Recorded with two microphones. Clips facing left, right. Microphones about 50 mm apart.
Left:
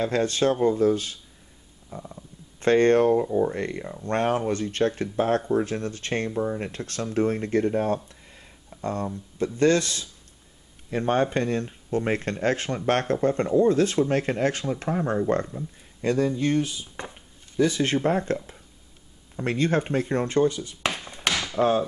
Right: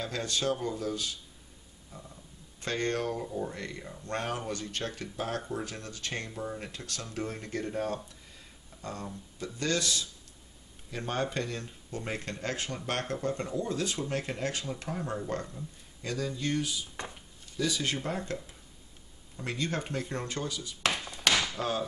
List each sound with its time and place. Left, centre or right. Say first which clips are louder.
0.0 s speech: left 10 dB; left
1.9 s stomach rumble: left 10 dB; left
2.6 s speech: left 13 dB; left
16.9 s a sound: left 3 dB; left
17.6 s speech: left 9 dB; left
21.0 s chop: left 1 dB; left
21.3 s a sound: left 1 dB; centre
21.5 s speech: left 10 dB; left